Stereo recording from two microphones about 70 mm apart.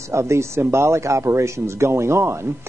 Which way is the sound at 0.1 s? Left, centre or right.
Right.